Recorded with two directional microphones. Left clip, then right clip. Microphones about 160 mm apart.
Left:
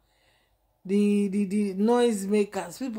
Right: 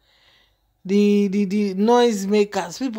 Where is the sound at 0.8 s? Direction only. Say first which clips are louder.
Right 7 dB; 35° right (ahead or behind).